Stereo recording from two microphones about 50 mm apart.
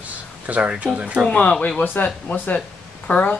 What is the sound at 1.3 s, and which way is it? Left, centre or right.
Speech, left.